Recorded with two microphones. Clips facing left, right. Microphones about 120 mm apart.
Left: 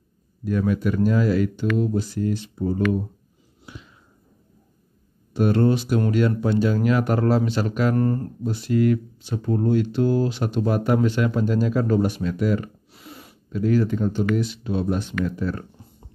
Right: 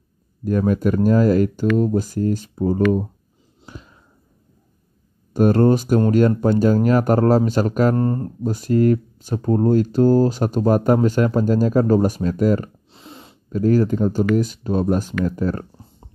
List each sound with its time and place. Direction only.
0.5 s speech: 45° right (ahead or behind)
3.6 s a sound: 40° right (ahead or behind)
5.3 s speech: 45° right (ahead or behind)
7.9 s speech: 25° right (ahead or behind)
8.5 s speech: 45° right (ahead or behind)
12.9 s a sound: 25° right (ahead or behind)
13.5 s speech: 40° right (ahead or behind)